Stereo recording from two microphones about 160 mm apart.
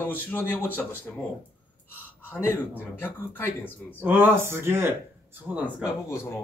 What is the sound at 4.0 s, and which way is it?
Speech, 15° right (ahead or behind).